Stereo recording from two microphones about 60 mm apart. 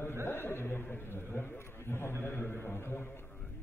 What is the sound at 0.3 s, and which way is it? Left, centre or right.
Speech, left.